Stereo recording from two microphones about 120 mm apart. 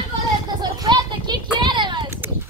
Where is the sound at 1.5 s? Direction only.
40° right (ahead or behind).